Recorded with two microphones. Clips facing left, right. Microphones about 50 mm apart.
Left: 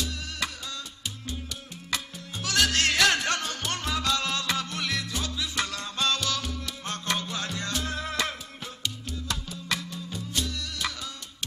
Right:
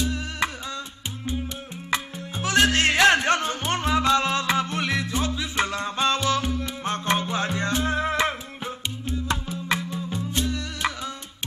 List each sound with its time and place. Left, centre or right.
0.0 s music: right
1.9 s music: right